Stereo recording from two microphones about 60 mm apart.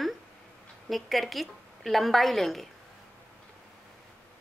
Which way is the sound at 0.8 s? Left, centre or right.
Centre.